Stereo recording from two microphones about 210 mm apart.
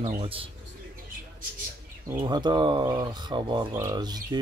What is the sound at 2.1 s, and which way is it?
Speech, 20° right (ahead or behind).